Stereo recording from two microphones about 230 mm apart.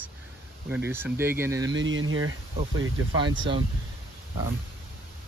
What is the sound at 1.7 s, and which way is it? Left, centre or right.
Speech, right.